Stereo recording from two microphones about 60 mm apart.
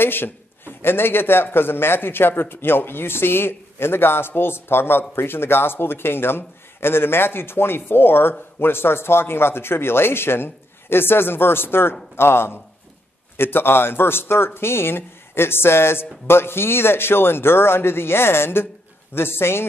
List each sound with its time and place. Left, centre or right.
0.0 s a man's voice: left